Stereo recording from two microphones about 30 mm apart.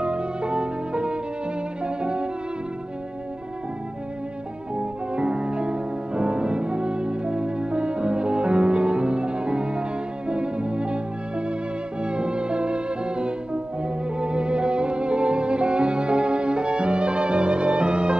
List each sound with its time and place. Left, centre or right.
0.0 s music: right
1.9 s violin: right
4.7 s music: right